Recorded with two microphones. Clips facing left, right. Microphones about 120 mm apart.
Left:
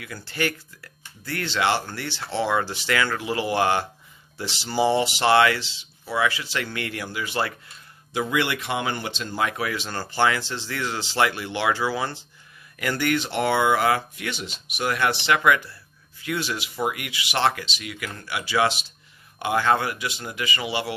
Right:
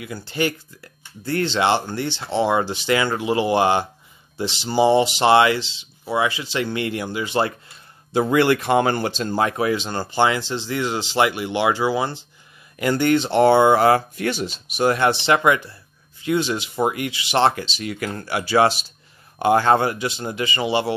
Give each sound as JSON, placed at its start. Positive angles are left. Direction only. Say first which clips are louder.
{"t": 0.0, "sound": "speech", "louder": "right 4 dB", "side_deg": -20}